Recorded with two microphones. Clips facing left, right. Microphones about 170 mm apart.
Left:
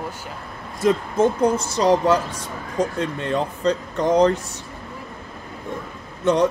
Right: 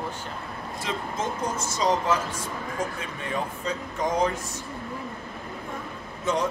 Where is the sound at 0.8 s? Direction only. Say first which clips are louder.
Left 13 dB; 55° left (ahead or behind); by 4.4 s 70° left (ahead or behind).